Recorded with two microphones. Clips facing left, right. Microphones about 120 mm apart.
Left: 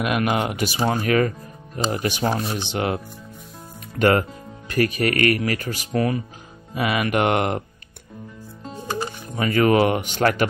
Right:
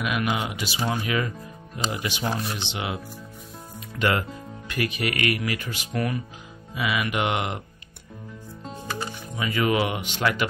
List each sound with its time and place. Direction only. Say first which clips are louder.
0.0 s speech: left 5 dB; 50° left (ahead or behind)
4.0 s speech: left 6 dB; 45° left (ahead or behind)
6.7 s speech: left 5 dB; 50° left (ahead or behind)
8.8 s music: left 5 dB; 30° left (ahead or behind)
9.4 s speech: left 6 dB; 50° left (ahead or behind)